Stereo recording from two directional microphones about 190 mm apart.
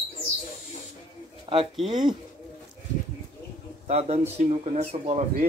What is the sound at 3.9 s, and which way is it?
Speech, 35° right (ahead or behind).